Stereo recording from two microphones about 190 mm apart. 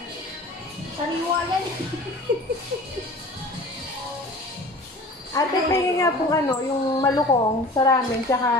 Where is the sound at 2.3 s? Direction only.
55° right (ahead or behind).